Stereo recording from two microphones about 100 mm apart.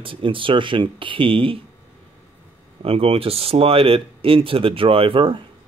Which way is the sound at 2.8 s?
70° right (ahead or behind).